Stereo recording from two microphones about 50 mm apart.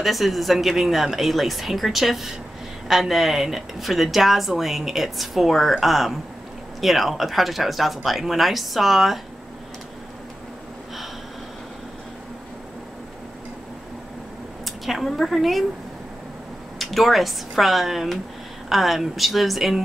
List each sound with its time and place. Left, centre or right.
0.0 s speech: centre
14.6 s a sound: centre
15.0 s speech: centre
16.7 s speech: centre